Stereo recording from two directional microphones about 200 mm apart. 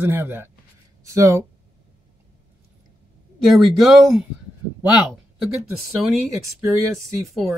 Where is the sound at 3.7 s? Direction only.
Centre (ahead or behind).